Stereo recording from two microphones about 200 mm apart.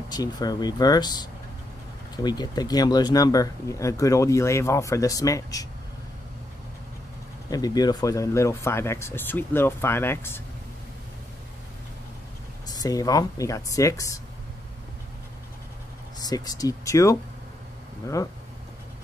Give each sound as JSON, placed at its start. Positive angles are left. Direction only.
{"t": 0.1, "sound": "speech", "side_deg": 20}
{"t": 7.4, "sound": "speech", "side_deg": 20}
{"t": 12.7, "sound": "speech", "side_deg": 20}
{"t": 16.2, "sound": "speech", "side_deg": 20}